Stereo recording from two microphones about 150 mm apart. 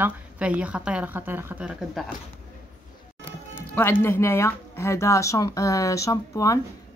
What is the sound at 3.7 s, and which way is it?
Speech, 15° left (ahead or behind).